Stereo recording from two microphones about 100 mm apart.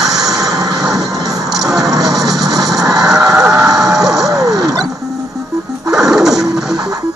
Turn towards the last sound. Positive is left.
turn(degrees=-5)  # may be behind; listen again after turning